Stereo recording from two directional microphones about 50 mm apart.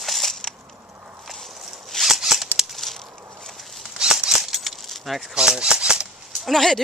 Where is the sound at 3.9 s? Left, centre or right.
Centre.